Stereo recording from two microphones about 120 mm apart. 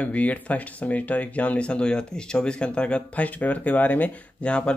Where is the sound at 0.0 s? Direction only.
10° left (ahead or behind).